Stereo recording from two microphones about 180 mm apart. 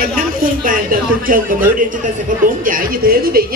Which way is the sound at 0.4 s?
50° right (ahead or behind).